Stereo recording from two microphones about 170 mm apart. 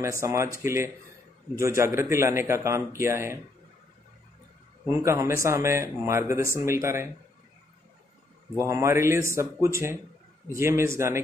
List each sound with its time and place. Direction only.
0.2 s speech: 15° right (ahead or behind)
4.8 s speech: 15° right (ahead or behind)
8.5 s speech: 15° right (ahead or behind)